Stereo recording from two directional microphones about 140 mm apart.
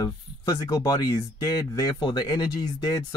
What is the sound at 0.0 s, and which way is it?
Speech, 25° left (ahead or behind).